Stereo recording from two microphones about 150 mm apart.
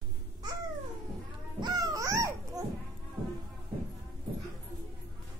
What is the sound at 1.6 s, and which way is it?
Babbling, 25° right (ahead or behind).